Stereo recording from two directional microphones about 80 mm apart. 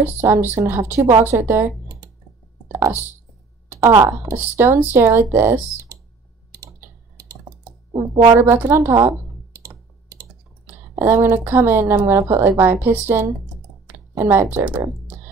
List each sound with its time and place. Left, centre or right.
0.0 s speech: right
3.7 s a sound: right
4.0 s speech: right
8.4 s speech: right
9.6 s computer keyboard: right
10.7 s speech: right